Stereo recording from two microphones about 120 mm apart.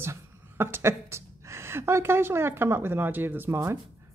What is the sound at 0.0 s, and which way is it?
A woman's voice, 20° right (ahead or behind).